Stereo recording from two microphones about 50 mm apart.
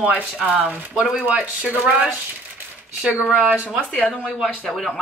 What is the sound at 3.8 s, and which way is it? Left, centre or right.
Speech, left.